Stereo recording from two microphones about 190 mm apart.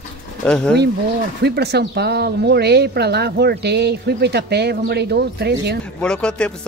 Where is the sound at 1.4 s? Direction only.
60° right (ahead or behind).